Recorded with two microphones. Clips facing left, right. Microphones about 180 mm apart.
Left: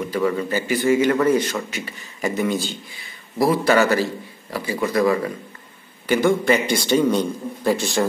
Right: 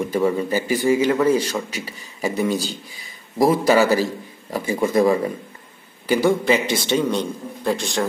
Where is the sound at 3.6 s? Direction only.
10° right (ahead or behind).